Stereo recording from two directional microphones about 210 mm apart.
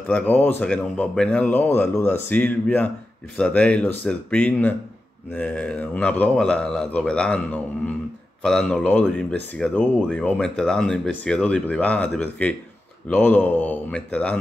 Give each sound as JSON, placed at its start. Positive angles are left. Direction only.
{"t": 0.1, "sound": "a man's voice", "side_deg": 10}